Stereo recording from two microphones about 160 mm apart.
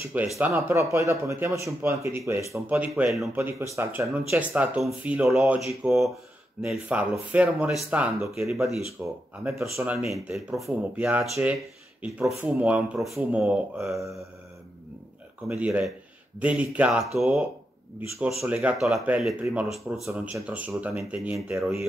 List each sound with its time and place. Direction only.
0.0 s speech: 10° right (ahead or behind)
10.0 s speech: centre (ahead or behind)
15.4 s speech: 10° right (ahead or behind)
20.1 s speech: 15° right (ahead or behind)